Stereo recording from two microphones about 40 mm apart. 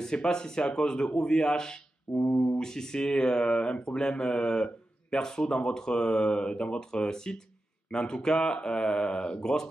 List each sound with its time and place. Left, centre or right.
0.0 s speech: centre
2.5 s speech: centre